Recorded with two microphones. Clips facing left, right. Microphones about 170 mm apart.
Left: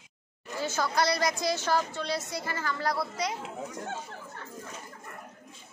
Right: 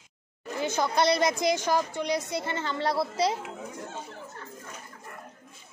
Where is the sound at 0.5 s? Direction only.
20° right (ahead or behind).